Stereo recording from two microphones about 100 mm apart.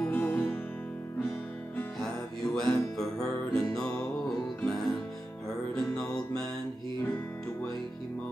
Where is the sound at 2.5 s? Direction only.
5° left (ahead or behind).